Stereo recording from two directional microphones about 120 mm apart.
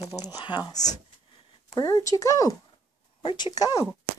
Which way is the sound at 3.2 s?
40° left (ahead or behind).